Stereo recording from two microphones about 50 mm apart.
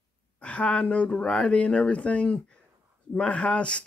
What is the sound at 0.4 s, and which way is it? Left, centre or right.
Speech, left.